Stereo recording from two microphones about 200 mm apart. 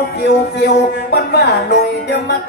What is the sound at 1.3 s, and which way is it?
Music, 55° left (ahead or behind).